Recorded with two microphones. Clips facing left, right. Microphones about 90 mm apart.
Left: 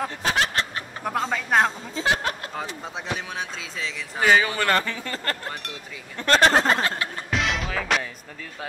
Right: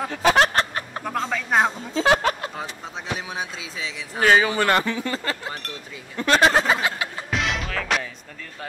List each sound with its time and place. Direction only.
0.1 s a sound: 90° right
0.4 s a sound: 50° right (ahead or behind)
1.0 s speech: 5° left (ahead or behind)
2.0 s music: 90° right
3.3 s speech: 5° right (ahead or behind)
4.4 s speech: 10° right (ahead or behind)
7.2 s music: centre (ahead or behind)